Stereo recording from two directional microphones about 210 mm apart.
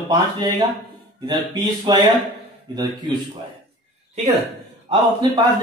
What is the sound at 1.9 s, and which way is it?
Speech, 20° right (ahead or behind).